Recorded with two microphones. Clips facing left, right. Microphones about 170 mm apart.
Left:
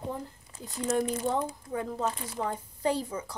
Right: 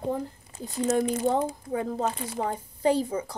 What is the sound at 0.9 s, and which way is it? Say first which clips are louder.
Speech: right 3 dB; 25° right (ahead or behind).